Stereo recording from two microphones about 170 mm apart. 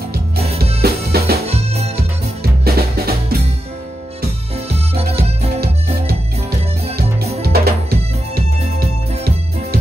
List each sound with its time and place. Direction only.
0.7 s music: 65° right (ahead or behind)
1.4 s music: 40° right (ahead or behind)
2.6 s music: 65° right (ahead or behind)
7.4 s music: 65° right (ahead or behind)